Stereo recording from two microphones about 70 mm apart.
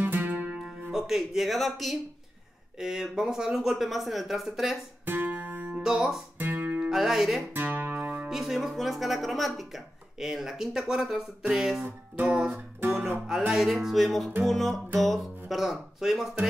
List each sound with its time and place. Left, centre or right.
0.0 s music: right
0.6 s speech: centre
5.0 s music: right
5.8 s music: centre
6.3 s guitar: right
6.9 s speech: centre
7.5 s guitar: right
8.3 s speech: centre
11.8 s music: right
13.5 s speech: centre